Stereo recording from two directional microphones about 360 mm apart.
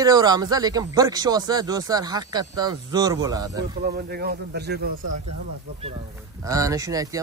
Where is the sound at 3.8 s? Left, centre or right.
Right.